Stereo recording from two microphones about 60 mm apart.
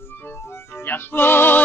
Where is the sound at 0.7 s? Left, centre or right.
Left.